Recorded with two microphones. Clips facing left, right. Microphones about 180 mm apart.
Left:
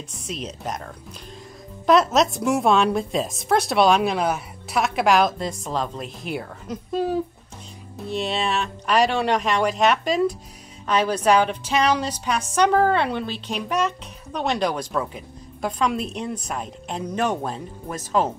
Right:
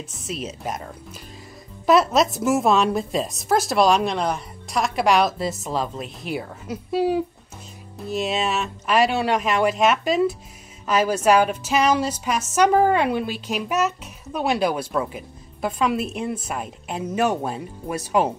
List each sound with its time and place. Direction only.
0.1 s a woman's voice: 5° right (ahead or behind)
1.9 s a woman's voice: centre (ahead or behind)